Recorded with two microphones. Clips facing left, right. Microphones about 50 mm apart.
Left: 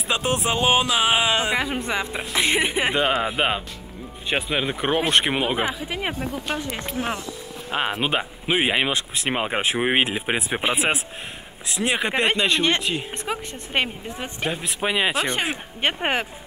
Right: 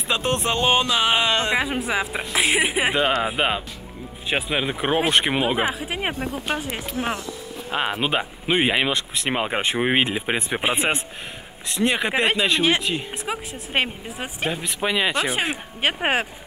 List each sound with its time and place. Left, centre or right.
0.1 s speech: centre
5.7 s speech: right
6.1 s speech: centre
15.2 s speech: centre